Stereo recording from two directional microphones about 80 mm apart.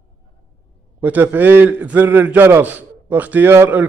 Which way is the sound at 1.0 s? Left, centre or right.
Right.